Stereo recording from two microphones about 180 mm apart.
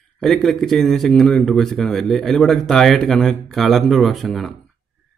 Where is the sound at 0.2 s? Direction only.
Centre (ahead or behind).